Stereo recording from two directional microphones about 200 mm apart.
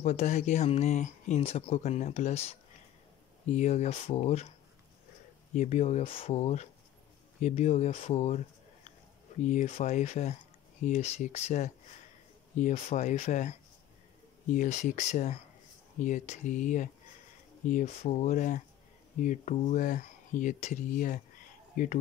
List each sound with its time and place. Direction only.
0.0 s speech: 35° left (ahead or behind)
3.5 s speech: 35° left (ahead or behind)
5.5 s speech: 35° left (ahead or behind)
9.4 s speech: 35° left (ahead or behind)